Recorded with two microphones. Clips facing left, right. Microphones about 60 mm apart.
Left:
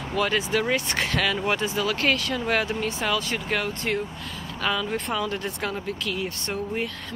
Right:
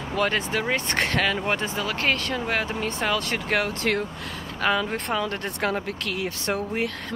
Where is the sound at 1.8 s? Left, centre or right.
Right.